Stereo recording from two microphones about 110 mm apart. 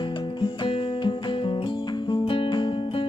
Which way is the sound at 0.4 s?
45° left (ahead or behind).